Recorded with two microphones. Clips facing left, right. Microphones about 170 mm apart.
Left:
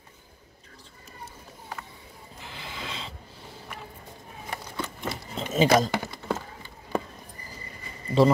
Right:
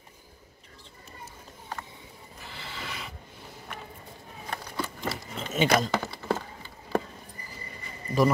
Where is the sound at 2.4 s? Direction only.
15° left (ahead or behind).